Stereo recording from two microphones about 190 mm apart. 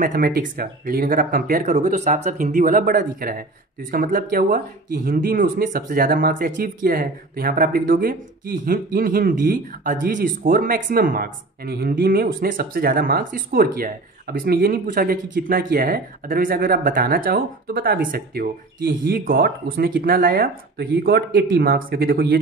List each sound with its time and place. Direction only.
0.0 s speech: 45° right (ahead or behind)